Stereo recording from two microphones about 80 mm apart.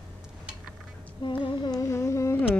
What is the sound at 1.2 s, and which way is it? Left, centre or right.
Humming, left.